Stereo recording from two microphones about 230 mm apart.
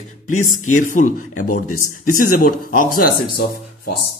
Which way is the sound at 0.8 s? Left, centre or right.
Left.